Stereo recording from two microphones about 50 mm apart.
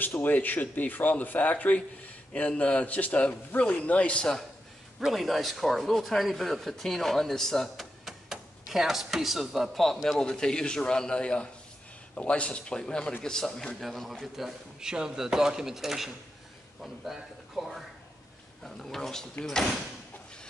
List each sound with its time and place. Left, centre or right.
0.0 s speech: left
5.0 s speech: centre
10.1 s a man's voice: centre
13.8 s speech: centre
18.6 s a man's voice: centre